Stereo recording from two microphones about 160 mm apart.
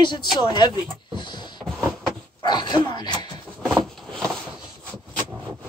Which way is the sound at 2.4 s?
25° left (ahead or behind).